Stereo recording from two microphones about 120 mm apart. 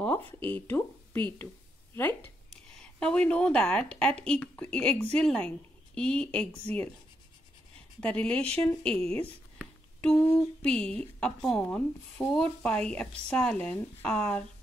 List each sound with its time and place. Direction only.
0.0 s a woman's voice: 15° left (ahead or behind)
8.0 s a woman's voice: 10° left (ahead or behind)
10.0 s a woman's voice: 10° left (ahead or behind)